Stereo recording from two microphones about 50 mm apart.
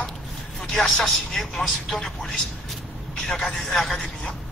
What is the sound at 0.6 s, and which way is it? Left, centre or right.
A man's voice, centre.